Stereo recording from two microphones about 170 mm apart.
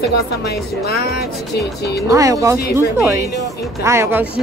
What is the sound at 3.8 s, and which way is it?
Speech, 15° right (ahead or behind).